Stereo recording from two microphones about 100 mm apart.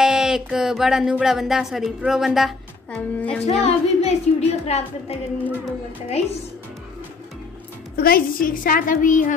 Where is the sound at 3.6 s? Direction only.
90° left.